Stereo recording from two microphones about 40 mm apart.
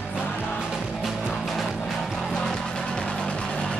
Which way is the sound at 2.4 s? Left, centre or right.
Centre.